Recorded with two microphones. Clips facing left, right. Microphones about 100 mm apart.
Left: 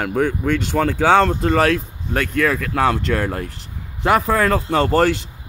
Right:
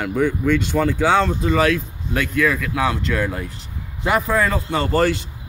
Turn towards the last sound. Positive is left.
turn(degrees=75)  # may be behind; listen again after turning